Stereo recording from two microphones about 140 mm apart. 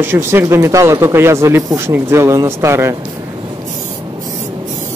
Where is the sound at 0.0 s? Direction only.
15° right (ahead or behind).